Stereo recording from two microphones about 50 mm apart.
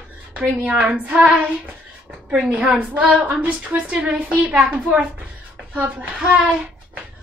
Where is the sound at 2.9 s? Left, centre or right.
Right.